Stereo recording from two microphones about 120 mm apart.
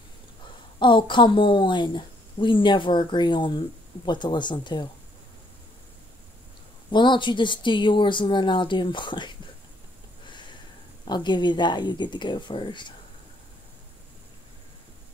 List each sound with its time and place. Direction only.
0.7 s a woman's voice: 40° left (ahead or behind)
6.9 s a woman's voice: 40° left (ahead or behind)
11.1 s a woman's voice: 40° left (ahead or behind)